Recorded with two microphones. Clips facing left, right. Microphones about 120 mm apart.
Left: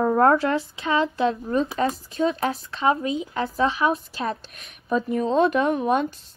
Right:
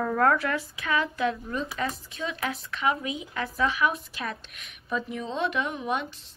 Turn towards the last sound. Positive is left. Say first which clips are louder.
# left 9 dB
turn(degrees=45)  # may be behind; listen again after turning